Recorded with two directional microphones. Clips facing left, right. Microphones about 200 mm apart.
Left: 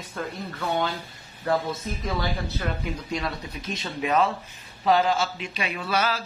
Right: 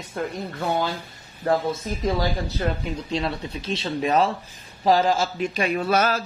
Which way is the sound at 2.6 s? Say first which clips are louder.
Right 4 dB; 30° right (ahead or behind).